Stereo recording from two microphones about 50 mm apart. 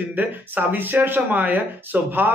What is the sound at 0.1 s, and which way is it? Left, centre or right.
Speech, right.